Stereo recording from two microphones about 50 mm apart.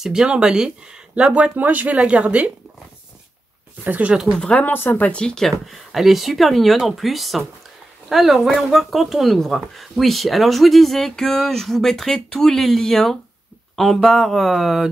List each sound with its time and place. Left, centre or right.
0.0 s speech: centre
1.1 s speech: right
3.8 s speech: right
4.6 s speech: left
5.1 s speech: centre
5.7 s speech: centre